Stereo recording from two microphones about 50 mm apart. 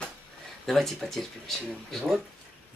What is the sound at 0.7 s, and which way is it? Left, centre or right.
Speech, centre.